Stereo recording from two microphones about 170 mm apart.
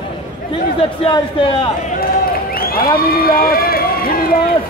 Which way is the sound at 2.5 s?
60° left (ahead or behind).